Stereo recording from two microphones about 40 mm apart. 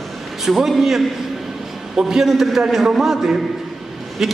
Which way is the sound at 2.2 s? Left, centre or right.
Centre.